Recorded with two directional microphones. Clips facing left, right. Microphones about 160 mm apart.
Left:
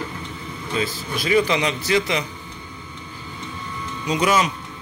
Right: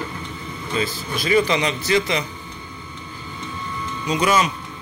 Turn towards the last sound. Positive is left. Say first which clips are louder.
# even
turn(degrees=15)  # may be behind; listen again after turning